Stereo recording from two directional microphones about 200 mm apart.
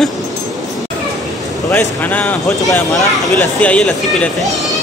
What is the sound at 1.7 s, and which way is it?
Speech, 10° left (ahead or behind).